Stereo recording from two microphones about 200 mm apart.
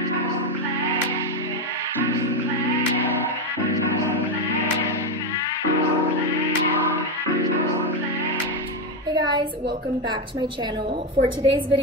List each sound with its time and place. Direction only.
11.2 s a woman's voice: 25° right (ahead or behind)